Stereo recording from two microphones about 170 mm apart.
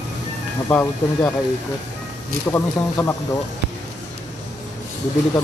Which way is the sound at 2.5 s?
15° left (ahead or behind).